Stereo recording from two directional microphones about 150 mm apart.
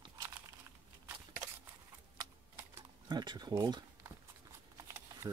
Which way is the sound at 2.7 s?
30° right (ahead or behind).